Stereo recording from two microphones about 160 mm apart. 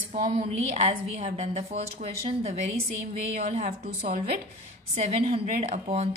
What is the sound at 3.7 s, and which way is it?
Speech, 60° right (ahead or behind).